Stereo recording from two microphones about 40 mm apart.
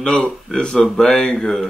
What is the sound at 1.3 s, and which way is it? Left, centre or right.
Mantra, centre.